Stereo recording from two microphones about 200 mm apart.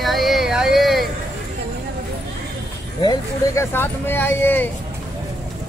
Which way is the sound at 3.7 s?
10° left (ahead or behind).